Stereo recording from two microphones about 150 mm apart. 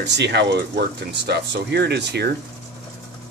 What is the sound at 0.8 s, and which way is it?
Speech, 90° right.